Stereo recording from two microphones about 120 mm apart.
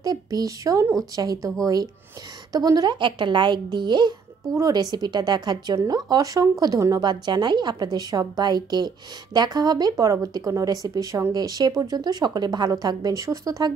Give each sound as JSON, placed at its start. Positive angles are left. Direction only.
{"t": 0.0, "sound": "a woman's voice", "side_deg": -30}
{"t": 4.6, "sound": "a woman's voice", "side_deg": -30}